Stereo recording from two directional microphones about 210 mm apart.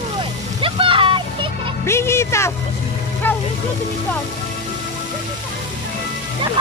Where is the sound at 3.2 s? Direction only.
10° left (ahead or behind).